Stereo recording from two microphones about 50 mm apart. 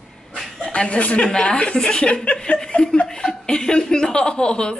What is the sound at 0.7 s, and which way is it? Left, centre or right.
A woman's voice, left.